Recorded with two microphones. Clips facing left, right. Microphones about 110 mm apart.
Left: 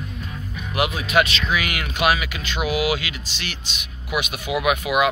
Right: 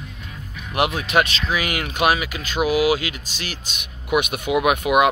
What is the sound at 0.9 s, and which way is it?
Speech, 35° right (ahead or behind).